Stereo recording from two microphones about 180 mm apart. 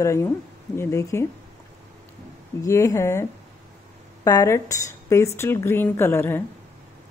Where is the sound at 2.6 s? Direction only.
15° left (ahead or behind).